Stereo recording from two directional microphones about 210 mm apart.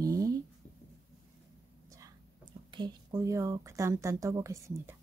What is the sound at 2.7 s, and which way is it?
Speech, 20° right (ahead or behind).